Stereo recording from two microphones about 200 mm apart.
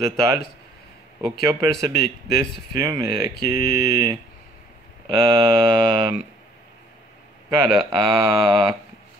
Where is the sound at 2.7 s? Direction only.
15° right (ahead or behind).